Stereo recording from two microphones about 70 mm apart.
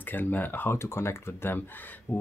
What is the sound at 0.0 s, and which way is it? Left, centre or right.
Speech, left.